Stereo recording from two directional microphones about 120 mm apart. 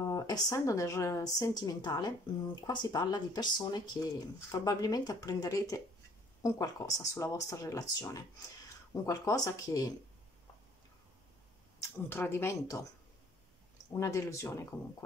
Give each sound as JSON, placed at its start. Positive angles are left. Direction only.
{"t": 0.0, "sound": "speech", "side_deg": 30}
{"t": 12.1, "sound": "speech", "side_deg": 20}
{"t": 13.9, "sound": "speech", "side_deg": 25}